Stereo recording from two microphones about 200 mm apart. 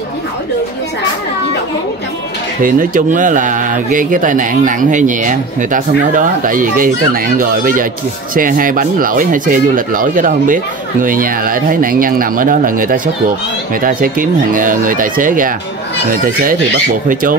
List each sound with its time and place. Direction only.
2.6 s speech: 45° right (ahead or behind)
17.1 s speech: 45° right (ahead or behind)